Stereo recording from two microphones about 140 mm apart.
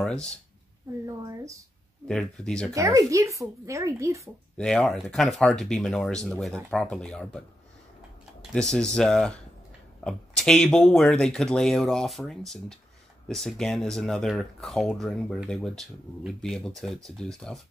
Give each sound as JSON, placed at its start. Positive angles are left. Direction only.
{"t": 0.0, "sound": "speech", "side_deg": 5}
{"t": 1.0, "sound": "a sound", "side_deg": -25}
{"t": 2.0, "sound": "speech", "side_deg": 5}
{"t": 2.7, "sound": "speech", "side_deg": -25}
{"t": 4.6, "sound": "speech", "side_deg": 5}
{"t": 8.5, "sound": "speech", "side_deg": 5}